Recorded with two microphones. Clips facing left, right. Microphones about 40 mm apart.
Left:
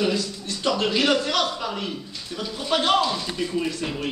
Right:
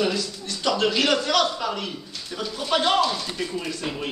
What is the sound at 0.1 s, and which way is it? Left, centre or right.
A man's voice, left.